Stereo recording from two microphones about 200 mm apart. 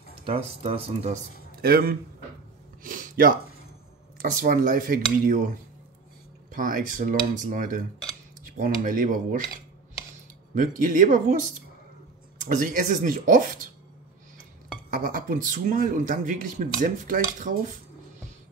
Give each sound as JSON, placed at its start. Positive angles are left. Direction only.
{"t": 0.2, "sound": "speech", "side_deg": -30}
{"t": 1.6, "sound": "speech", "side_deg": -50}
{"t": 2.8, "sound": "a sound", "side_deg": -45}
{"t": 4.4, "sound": "speech", "side_deg": -45}
{"t": 15.0, "sound": "speech", "side_deg": -45}